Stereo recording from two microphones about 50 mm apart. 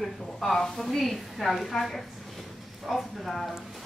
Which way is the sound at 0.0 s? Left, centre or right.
Centre.